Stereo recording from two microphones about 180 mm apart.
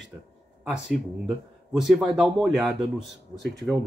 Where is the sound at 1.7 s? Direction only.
Centre (ahead or behind).